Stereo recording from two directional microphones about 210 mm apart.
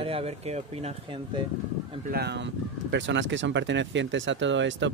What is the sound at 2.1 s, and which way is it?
Speech, 55° right (ahead or behind).